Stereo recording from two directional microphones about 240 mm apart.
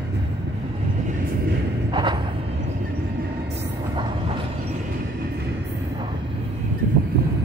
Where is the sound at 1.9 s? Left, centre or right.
Centre.